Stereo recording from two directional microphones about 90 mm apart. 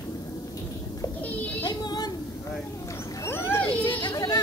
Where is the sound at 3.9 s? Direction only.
50° left (ahead or behind).